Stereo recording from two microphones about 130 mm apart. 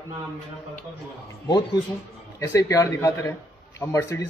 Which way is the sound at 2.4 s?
25° left (ahead or behind).